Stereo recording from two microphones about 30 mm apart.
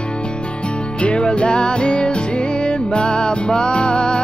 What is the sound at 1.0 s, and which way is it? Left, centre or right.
Music, left.